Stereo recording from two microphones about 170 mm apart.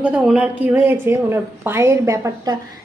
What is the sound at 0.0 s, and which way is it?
A woman's voice, 5° right (ahead or behind).